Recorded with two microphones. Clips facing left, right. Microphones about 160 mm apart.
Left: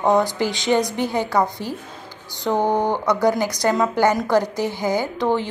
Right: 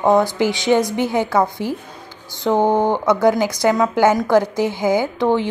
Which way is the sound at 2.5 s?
20° right (ahead or behind).